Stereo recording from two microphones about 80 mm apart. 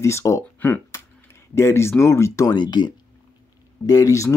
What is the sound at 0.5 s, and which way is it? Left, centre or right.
Speech, left.